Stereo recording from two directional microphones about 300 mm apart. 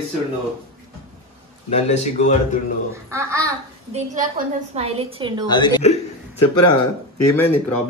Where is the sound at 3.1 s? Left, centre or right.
Centre.